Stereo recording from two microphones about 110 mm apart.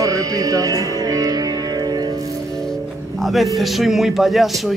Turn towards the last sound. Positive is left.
turn(degrees=0)  # may be behind; listen again after turning